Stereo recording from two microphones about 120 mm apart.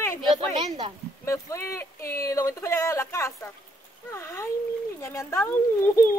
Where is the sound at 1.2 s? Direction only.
25° left (ahead or behind).